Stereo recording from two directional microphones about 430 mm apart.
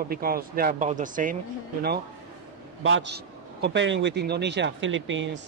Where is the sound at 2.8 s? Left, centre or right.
Right.